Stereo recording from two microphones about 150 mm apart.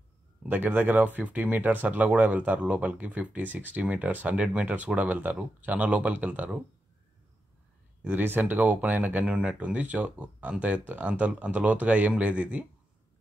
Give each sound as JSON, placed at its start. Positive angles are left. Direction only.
{"t": 0.5, "sound": "speech", "side_deg": -10}
{"t": 8.0, "sound": "speech", "side_deg": -10}